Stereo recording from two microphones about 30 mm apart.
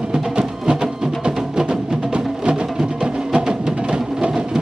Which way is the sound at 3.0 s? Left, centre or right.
Right.